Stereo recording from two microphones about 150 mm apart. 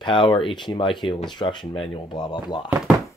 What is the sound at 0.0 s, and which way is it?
Speech, 35° left (ahead or behind).